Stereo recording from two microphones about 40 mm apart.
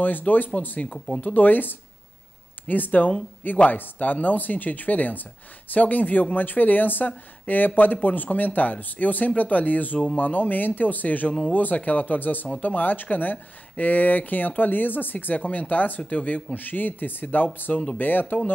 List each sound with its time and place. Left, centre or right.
0.0 s speech: left
0.9 s speech: centre
1.2 s speech: left
16.5 s speech: left